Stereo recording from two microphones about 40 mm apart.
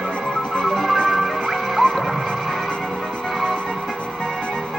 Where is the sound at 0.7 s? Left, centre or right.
Centre.